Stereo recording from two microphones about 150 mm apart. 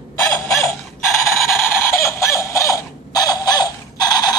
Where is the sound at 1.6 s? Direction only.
15° left (ahead or behind).